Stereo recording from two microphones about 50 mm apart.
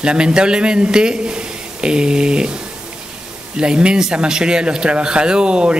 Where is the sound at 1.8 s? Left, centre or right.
Centre.